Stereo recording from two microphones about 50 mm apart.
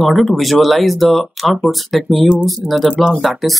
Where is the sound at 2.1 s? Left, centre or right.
Right.